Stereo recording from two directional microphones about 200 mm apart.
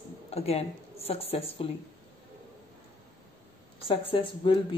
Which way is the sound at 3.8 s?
25° left (ahead or behind).